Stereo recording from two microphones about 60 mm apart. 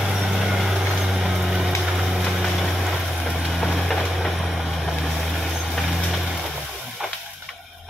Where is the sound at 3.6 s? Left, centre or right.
Centre.